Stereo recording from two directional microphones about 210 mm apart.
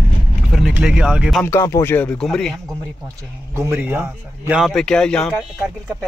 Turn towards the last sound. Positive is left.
turn(degrees=0)  # may be behind; listen again after turning